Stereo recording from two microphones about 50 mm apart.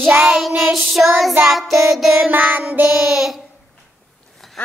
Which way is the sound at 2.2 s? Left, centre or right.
Right.